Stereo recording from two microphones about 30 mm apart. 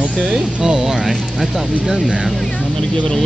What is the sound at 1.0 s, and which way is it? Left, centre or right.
Speech, centre.